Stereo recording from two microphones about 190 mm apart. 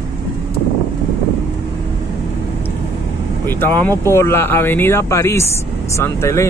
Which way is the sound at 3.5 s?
10° left (ahead or behind).